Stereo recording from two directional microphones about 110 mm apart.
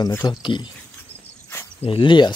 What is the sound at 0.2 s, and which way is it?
Speech, 45° left (ahead or behind).